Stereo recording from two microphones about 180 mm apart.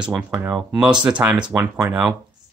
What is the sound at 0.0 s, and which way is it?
Speech, 5° right (ahead or behind).